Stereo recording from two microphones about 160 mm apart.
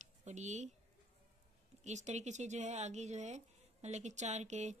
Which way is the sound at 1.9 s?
45° right (ahead or behind).